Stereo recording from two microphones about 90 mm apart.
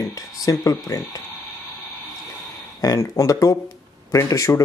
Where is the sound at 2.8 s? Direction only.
35° left (ahead or behind).